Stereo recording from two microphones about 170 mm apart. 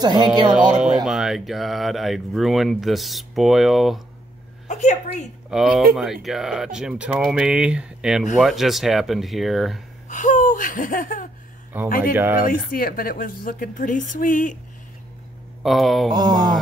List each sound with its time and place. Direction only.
0.0 s wail: 25° right (ahead or behind)
0.5 s speech: 5° right (ahead or behind)
4.6 s laughter: 45° left (ahead or behind)
5.5 s speech: centre (ahead or behind)
10.0 s laughter: 45° left (ahead or behind)
11.7 s speech: 10° right (ahead or behind)
12.4 s a woman's voice: 60° left (ahead or behind)
15.6 s speech: centre (ahead or behind)
16.1 s wail: 25° right (ahead or behind)